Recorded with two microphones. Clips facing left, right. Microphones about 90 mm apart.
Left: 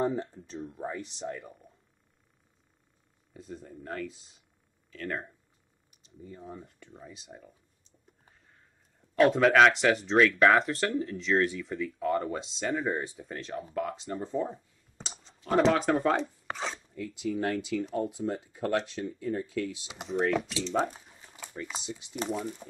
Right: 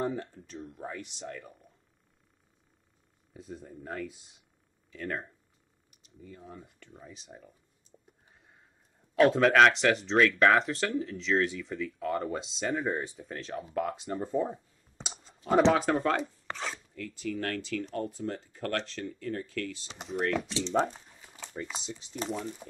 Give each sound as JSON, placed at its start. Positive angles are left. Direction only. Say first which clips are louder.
{"t": 0.2, "sound": "speech", "louder": "left 4 dB", "side_deg": 25}
{"t": 3.3, "sound": "speech", "louder": "even", "side_deg": 0}
{"t": 6.0, "sound": "speech", "louder": "left 3 dB", "side_deg": 30}
{"t": 7.0, "sound": "speech", "louder": "left 1 dB", "side_deg": 0}
{"t": 9.1, "sound": "speech", "louder": "even", "side_deg": 0}
{"t": 15.0, "sound": "clicking", "louder": "right 1 dB", "side_deg": -5}
{"t": 15.7, "sound": "speech", "louder": "left 1 dB", "side_deg": 0}
{"t": 16.4, "sound": "filing", "louder": "left 2 dB", "side_deg": 5}
{"t": 16.9, "sound": "speech", "louder": "left 3 dB", "side_deg": 15}
{"t": 20.6, "sound": "a sound", "louder": "right 1 dB", "side_deg": 5}
{"t": 21.5, "sound": "speech", "louder": "even", "side_deg": 0}